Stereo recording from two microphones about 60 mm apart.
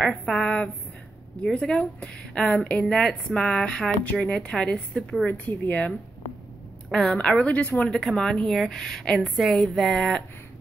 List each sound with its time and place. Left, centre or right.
0.3 s a sound: centre
1.4 s a woman's voice: centre
5.2 s speech: left
6.9 s a woman's voice: centre
7.9 s a woman's voice: centre